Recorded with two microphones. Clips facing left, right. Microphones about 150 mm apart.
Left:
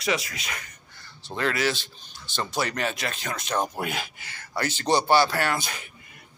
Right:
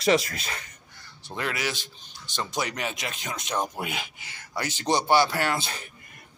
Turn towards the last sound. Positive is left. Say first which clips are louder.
# even
turn(degrees=-30)  # may be behind; listen again after turning